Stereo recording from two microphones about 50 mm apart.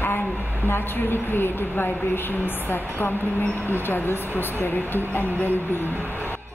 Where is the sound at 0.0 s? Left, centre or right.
Left.